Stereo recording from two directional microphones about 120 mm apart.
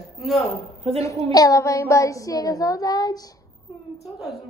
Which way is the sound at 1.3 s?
30° left (ahead or behind).